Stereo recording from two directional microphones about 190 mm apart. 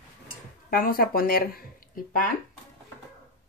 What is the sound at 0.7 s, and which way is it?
Speech, 50° left (ahead or behind).